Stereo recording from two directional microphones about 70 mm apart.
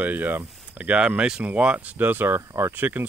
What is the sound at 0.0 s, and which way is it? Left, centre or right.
Speech, right.